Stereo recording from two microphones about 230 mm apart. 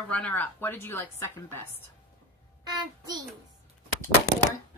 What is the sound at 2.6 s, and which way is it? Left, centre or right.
Child singing, centre.